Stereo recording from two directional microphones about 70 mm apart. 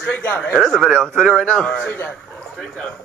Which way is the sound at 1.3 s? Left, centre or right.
Centre.